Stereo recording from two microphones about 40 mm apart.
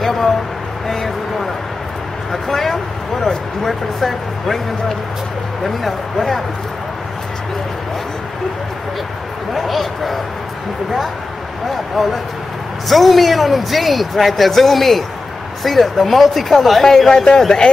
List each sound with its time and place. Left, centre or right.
0.0 s vehicle: centre
0.8 s speech: centre
6.1 s speech: centre
9.5 s speech: centre
11.7 s speech: centre
16.9 s speech: centre